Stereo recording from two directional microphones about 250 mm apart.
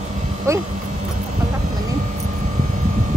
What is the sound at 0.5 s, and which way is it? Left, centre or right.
Speech, centre.